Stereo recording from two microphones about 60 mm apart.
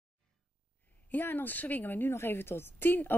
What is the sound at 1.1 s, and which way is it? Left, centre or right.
A woman's voice, left.